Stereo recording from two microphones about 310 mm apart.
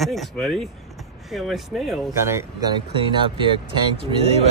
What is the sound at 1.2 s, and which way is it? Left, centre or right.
Speech, centre.